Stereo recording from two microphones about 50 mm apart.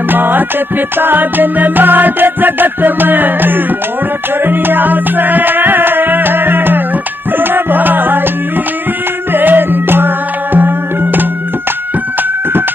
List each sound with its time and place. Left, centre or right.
0.1 s music: right
9.3 s music: right